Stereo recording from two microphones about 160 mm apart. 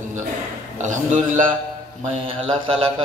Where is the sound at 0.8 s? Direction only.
50° right (ahead or behind).